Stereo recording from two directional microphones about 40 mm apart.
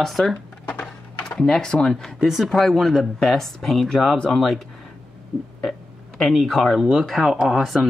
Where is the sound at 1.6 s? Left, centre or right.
Centre.